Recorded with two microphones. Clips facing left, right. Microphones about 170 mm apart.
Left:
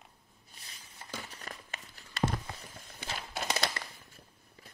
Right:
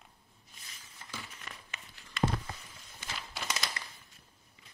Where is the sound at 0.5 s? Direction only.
35° left (ahead or behind).